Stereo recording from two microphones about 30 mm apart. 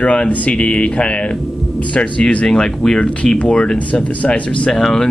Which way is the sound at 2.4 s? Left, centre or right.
Left.